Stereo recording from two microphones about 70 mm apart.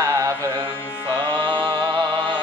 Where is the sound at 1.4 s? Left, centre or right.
Right.